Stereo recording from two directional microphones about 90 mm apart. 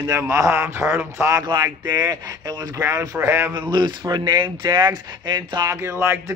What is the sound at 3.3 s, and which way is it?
Speech, 25° right (ahead or behind).